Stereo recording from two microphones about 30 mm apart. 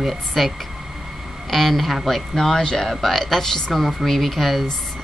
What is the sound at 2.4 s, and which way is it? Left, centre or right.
Speech, left.